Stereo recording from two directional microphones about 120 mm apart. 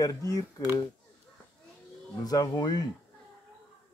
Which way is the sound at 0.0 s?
30° left (ahead or behind).